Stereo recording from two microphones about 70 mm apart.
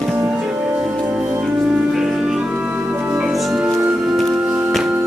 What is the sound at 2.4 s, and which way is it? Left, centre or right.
Music, right.